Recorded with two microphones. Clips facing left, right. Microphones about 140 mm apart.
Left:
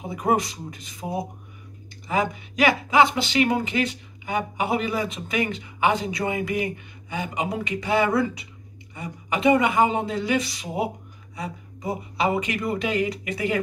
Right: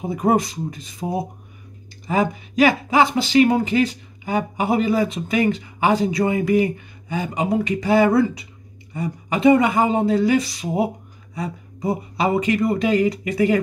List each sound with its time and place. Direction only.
0.1 s speech: 35° right (ahead or behind)